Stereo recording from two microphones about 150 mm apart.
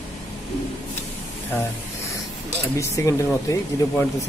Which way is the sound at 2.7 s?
20° left (ahead or behind).